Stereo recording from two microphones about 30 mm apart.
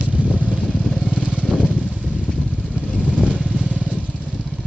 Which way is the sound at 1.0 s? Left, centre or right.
Right.